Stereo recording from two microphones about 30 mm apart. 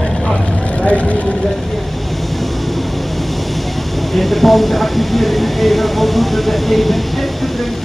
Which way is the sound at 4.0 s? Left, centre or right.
Centre.